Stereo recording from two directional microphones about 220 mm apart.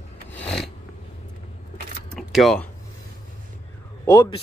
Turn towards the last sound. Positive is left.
turn(degrees=20)  # may be behind; listen again after turning